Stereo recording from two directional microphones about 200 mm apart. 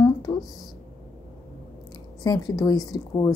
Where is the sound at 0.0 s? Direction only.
20° left (ahead or behind).